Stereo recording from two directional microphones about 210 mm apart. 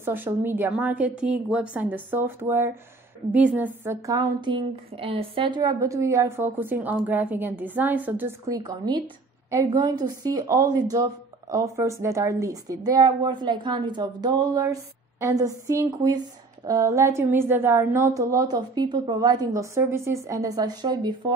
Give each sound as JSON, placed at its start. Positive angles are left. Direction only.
{"t": 0.0, "sound": "a woman's voice", "side_deg": -10}